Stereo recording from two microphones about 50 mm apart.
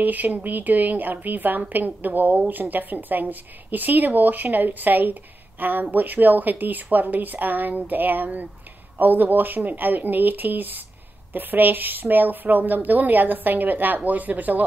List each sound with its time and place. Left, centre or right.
0.0 s a woman's voice: right